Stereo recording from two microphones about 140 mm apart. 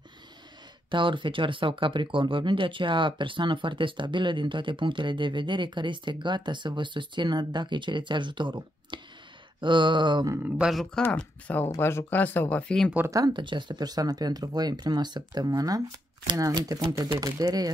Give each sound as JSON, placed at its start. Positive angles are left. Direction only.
{"t": 0.8, "sound": "speech", "side_deg": -35}
{"t": 10.6, "sound": "speech", "side_deg": 0}
{"t": 13.1, "sound": "speech", "side_deg": -30}